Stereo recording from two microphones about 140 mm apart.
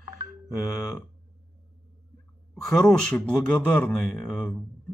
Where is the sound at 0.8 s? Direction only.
Centre (ahead or behind).